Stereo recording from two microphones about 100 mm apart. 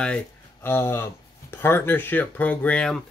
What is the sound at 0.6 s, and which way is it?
Speech, 25° left (ahead or behind).